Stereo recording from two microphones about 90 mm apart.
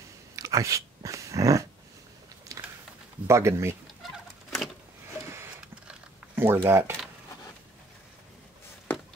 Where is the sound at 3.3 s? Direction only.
30° right (ahead or behind).